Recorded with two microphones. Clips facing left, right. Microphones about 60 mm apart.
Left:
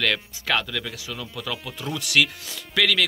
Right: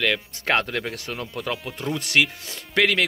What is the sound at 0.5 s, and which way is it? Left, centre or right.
Speech, right.